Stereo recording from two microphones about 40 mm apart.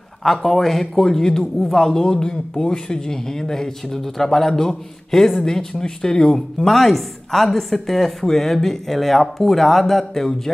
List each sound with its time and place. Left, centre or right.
0.2 s speech: centre
2.0 s a woman's voice: centre